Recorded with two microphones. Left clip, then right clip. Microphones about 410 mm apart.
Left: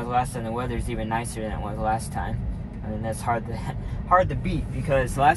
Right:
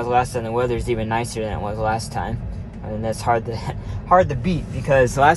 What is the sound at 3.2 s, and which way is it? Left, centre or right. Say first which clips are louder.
Speech: right 7 dB; right.